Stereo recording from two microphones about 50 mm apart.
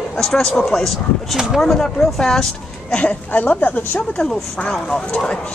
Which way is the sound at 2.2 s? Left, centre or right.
Centre.